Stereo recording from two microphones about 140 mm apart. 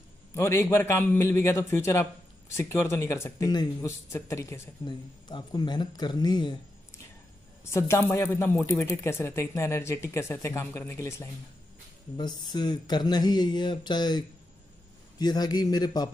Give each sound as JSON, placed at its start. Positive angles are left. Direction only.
{"t": 0.3, "sound": "speech", "side_deg": 20}
{"t": 7.7, "sound": "speech", "side_deg": 15}
{"t": 12.2, "sound": "speech", "side_deg": 30}